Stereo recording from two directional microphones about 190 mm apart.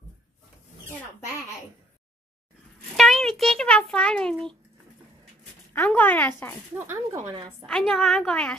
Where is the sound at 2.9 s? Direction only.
Centre (ahead or behind).